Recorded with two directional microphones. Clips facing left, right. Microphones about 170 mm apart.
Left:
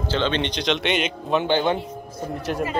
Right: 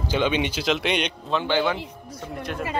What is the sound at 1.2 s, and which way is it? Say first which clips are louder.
Speech: left 3 dB; 20° left (ahead or behind).